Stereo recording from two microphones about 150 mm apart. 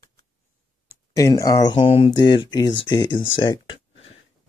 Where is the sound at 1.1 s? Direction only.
20° left (ahead or behind).